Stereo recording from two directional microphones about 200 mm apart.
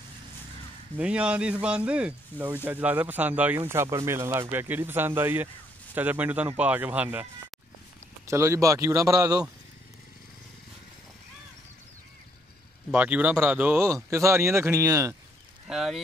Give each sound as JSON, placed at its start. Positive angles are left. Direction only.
{"t": 0.9, "sound": "speech", "side_deg": -5}
{"t": 8.3, "sound": "speech", "side_deg": -15}
{"t": 12.9, "sound": "speech", "side_deg": -5}
{"t": 15.6, "sound": "speech", "side_deg": 0}